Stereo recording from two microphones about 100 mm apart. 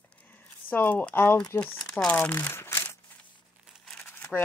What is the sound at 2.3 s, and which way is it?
Crumpling, 25° left (ahead or behind).